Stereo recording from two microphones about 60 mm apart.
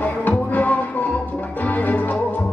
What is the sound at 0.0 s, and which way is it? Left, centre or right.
Music, left.